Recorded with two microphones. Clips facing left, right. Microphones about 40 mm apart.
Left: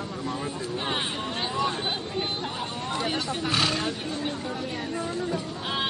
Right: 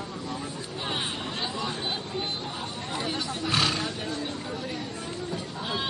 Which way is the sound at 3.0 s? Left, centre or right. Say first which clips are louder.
Left 2 dB; left.